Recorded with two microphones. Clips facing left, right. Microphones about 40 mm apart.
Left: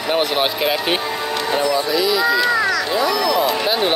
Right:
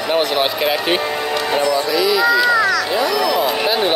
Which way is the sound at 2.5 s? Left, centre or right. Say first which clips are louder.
Right 3 dB; centre.